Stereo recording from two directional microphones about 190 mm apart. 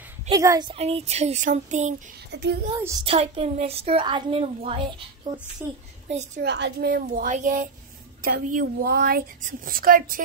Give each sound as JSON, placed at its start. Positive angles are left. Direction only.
{"t": 0.3, "sound": "a woman's voice", "side_deg": -20}
{"t": 0.7, "sound": "a woman's voice", "side_deg": -35}
{"t": 2.3, "sound": "a woman's voice", "side_deg": -65}
{"t": 2.8, "sound": "a woman's voice", "side_deg": -15}
{"t": 3.1, "sound": "a woman's voice", "side_deg": -30}
{"t": 6.0, "sound": "a woman's voice", "side_deg": -35}
{"t": 6.4, "sound": "a woman's voice", "side_deg": -60}